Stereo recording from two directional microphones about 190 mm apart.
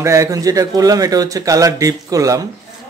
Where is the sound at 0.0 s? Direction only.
15° right (ahead or behind).